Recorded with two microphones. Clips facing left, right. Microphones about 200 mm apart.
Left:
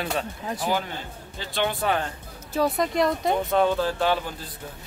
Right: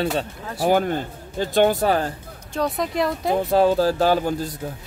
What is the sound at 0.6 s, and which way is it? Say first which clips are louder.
Speech: right 10 dB; 50° right (ahead or behind).